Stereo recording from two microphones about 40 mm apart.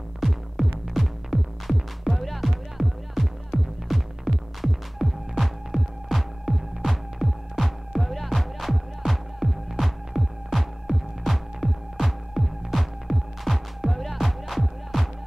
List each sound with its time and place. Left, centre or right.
0.2 s music: centre
4.6 s throbbing: centre
10.1 s throbbing: right
10.5 s throbbing: centre